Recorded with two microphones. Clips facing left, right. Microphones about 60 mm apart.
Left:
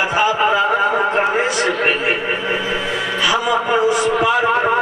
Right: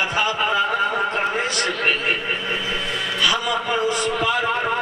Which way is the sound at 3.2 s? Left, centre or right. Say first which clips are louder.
Left 4 dB; centre.